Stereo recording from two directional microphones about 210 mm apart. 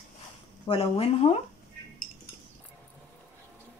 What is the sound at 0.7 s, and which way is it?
Speech, 30° left (ahead or behind).